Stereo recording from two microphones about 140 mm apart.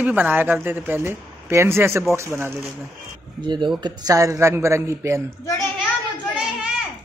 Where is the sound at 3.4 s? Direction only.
35° right (ahead or behind).